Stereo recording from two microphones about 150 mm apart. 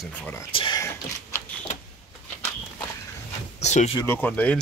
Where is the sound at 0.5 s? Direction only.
35° left (ahead or behind).